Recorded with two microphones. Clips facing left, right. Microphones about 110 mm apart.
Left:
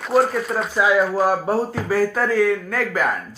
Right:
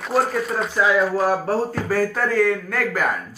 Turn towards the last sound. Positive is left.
turn(degrees=0)  # may be behind; listen again after turning